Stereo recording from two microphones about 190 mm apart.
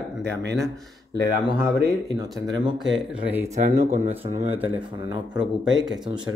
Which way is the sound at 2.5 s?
20° right (ahead or behind).